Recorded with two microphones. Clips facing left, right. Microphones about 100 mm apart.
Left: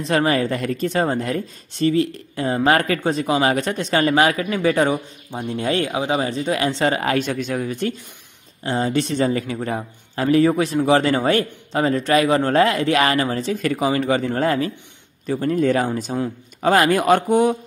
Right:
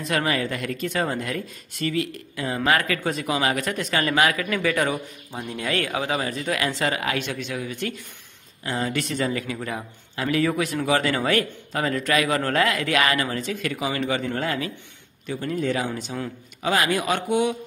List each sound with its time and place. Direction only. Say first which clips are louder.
0.0 s speech: left 6 dB; 30° left (ahead or behind)
8.6 s speech: left 6 dB; 30° left (ahead or behind)